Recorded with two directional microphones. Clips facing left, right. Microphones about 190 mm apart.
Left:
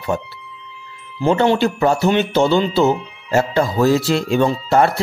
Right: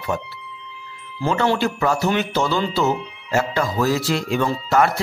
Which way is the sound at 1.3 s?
25° left (ahead or behind).